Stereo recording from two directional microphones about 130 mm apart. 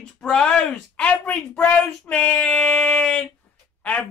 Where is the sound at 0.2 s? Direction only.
5° left (ahead or behind).